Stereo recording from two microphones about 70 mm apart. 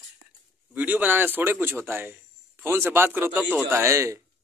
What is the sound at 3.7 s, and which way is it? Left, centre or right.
Speech, right.